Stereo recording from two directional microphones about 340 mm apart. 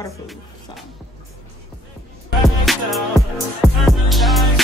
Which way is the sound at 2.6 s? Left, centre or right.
Centre.